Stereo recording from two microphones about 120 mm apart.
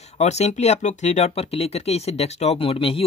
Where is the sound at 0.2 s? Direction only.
65° left (ahead or behind).